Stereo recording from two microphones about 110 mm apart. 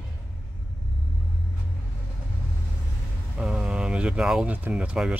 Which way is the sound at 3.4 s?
5° right (ahead or behind).